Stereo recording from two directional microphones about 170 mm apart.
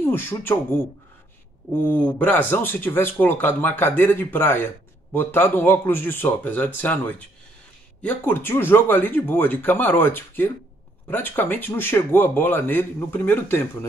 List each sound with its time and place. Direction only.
0.0 s speech: 10° left (ahead or behind)